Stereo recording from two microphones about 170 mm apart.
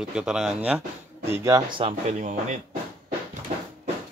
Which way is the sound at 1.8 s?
35° right (ahead or behind).